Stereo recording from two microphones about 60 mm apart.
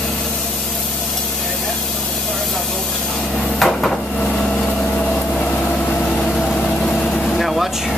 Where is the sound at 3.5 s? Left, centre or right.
Centre.